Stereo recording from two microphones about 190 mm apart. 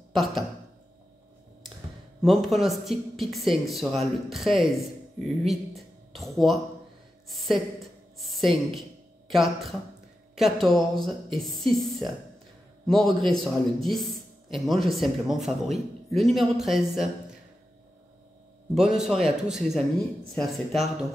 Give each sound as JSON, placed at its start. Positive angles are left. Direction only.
{"t": 0.1, "sound": "speech", "side_deg": 0}
{"t": 2.2, "sound": "a man's voice", "side_deg": 0}
{"t": 12.8, "sound": "a man's voice", "side_deg": 0}
{"t": 18.8, "sound": "a man's voice", "side_deg": 0}